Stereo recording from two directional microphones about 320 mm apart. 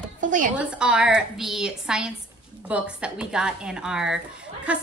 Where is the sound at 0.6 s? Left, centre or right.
Centre.